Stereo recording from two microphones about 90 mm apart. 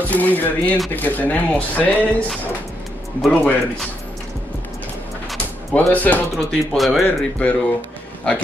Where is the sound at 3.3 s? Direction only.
15° left (ahead or behind).